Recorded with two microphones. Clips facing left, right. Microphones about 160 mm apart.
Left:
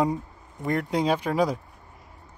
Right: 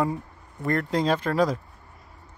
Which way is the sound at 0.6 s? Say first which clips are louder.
Even; 10° left (ahead or behind).